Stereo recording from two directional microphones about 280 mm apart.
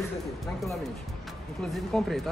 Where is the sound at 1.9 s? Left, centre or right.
Centre.